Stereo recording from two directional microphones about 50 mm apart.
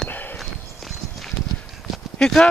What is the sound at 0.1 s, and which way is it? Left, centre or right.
Walk, left.